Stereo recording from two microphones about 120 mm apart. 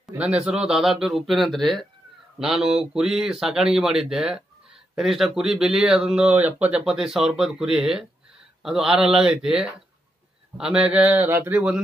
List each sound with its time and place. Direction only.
0.0 s speech: 5° right (ahead or behind)